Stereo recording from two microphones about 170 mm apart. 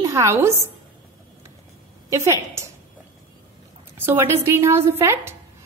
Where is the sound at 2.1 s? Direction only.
15° right (ahead or behind).